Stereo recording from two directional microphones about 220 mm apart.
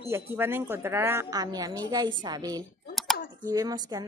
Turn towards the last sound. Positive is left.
turn(degrees=-15)  # may be behind; listen again after turning